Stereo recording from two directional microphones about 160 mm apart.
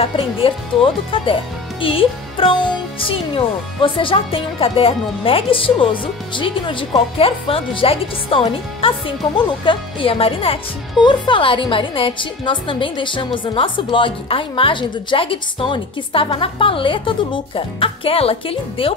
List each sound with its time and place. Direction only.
0.4 s speech: 35° left (ahead or behind)